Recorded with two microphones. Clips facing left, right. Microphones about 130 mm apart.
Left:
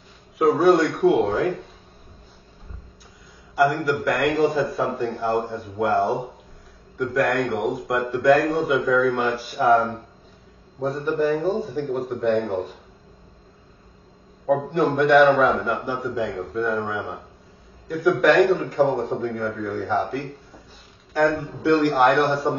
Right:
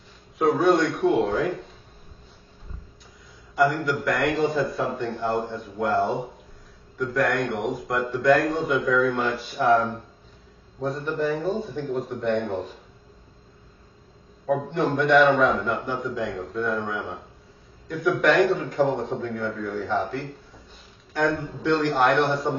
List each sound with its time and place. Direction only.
0.6 s a man's voice: centre (ahead or behind)
3.5 s a man's voice: 5° left (ahead or behind)
14.9 s a man's voice: centre (ahead or behind)